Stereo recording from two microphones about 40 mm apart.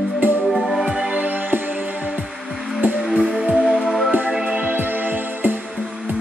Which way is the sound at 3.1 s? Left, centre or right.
Right.